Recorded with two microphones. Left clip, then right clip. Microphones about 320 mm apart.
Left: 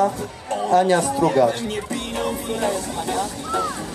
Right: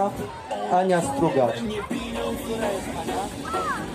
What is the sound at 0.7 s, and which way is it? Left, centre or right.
Speech, left.